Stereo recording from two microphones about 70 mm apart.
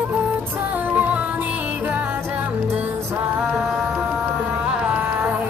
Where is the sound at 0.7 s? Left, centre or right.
Right.